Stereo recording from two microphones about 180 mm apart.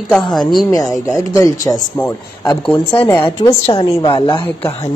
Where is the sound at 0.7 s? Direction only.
20° left (ahead or behind).